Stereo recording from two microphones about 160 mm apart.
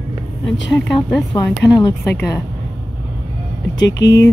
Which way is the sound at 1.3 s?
25° left (ahead or behind).